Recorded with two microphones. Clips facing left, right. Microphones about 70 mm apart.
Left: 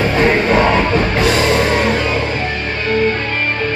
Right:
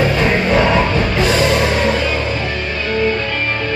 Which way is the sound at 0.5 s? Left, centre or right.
Left.